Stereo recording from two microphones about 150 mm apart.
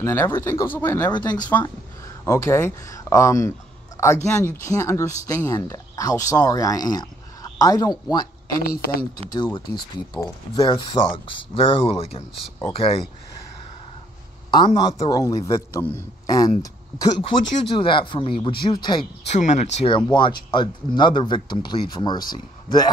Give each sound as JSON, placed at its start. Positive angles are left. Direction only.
{"t": 0.0, "sound": "a man's voice", "side_deg": 20}
{"t": 8.6, "sound": "speech", "side_deg": 80}
{"t": 9.3, "sound": "a man's voice", "side_deg": 30}
{"t": 14.5, "sound": "a man's voice", "side_deg": 30}
{"t": 19.3, "sound": "speech", "side_deg": 50}
{"t": 20.1, "sound": "speech", "side_deg": 30}